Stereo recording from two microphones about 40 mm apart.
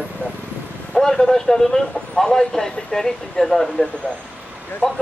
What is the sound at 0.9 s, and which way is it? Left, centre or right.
A man's voice, centre.